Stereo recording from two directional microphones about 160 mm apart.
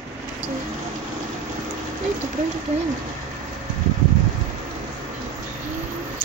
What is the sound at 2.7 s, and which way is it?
Speech, 45° right (ahead or behind).